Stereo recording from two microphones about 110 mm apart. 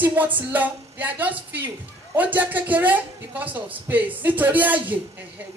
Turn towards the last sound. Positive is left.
turn(degrees=-15)  # may be behind; listen again after turning